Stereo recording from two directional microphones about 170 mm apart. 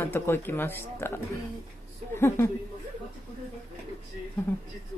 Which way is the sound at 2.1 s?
15° left (ahead or behind).